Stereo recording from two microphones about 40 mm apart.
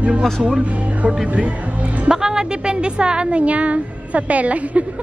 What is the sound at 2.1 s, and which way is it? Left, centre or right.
A woman's voice, centre.